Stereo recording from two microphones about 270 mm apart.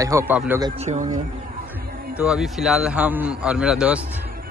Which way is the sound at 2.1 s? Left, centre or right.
Centre.